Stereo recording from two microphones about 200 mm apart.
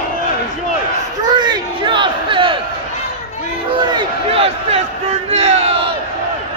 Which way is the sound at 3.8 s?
25° right (ahead or behind).